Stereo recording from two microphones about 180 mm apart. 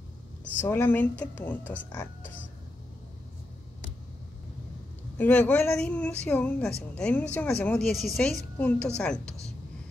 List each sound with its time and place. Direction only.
0.6 s a woman's voice: 10° left (ahead or behind)
5.1 s a woman's voice: 10° left (ahead or behind)